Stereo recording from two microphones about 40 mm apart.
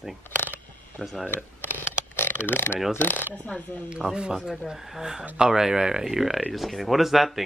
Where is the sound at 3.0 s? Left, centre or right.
Left.